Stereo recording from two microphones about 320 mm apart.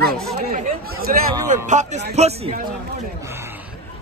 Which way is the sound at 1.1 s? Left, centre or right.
Right.